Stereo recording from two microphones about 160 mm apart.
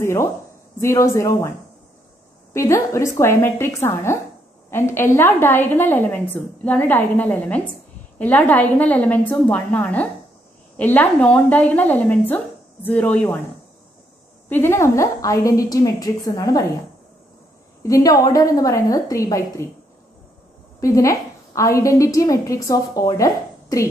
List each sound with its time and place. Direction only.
0.0 s a woman's voice: 15° left (ahead or behind)
2.5 s a woman's voice: 15° left (ahead or behind)
14.5 s a woman's voice: 15° left (ahead or behind)
17.8 s a woman's voice: 20° left (ahead or behind)
20.8 s a woman's voice: 20° left (ahead or behind)